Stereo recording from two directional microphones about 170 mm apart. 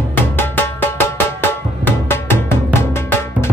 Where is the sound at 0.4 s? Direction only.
10° left (ahead or behind).